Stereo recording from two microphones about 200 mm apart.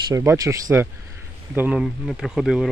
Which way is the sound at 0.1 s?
15° right (ahead or behind).